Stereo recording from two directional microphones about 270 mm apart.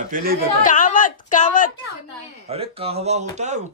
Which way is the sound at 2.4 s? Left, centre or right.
Right.